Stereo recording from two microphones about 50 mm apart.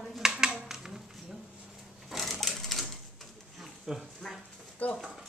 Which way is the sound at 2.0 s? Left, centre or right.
Centre.